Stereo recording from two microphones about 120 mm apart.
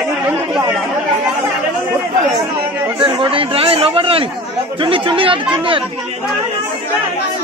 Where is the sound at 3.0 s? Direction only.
45° right (ahead or behind).